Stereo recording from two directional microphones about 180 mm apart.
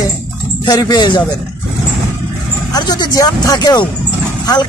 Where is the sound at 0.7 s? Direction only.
20° left (ahead or behind).